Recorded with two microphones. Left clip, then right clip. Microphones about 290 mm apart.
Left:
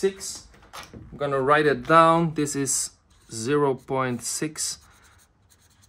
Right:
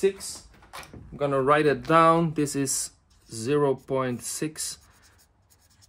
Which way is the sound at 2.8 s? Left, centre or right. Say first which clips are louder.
Left 3 dB; centre.